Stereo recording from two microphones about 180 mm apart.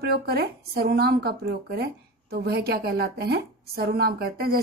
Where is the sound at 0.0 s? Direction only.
60° right (ahead or behind).